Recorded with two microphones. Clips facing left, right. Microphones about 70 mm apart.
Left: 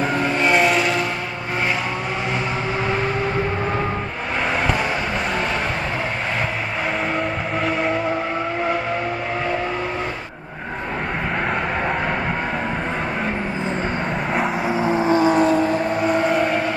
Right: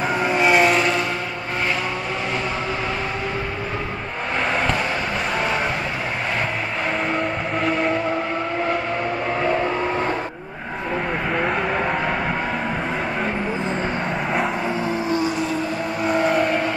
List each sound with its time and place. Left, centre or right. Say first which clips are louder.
0.0 s vehicle: even; centre
7.2 s vehicle: even; centre
14.7 s vehicle: left 4 dB; left
16.1 s vehicle: right 2 dB; centre